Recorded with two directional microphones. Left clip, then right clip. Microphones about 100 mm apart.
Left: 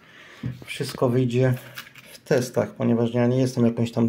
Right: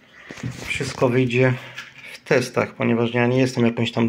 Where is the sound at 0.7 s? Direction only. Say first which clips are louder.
Right 3 dB; 25° left (ahead or behind).